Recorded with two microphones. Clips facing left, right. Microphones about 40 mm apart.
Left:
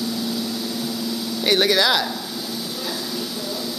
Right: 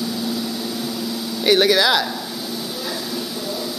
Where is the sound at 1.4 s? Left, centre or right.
Centre.